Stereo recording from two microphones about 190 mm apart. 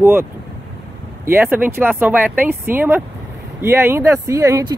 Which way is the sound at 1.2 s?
10° right (ahead or behind).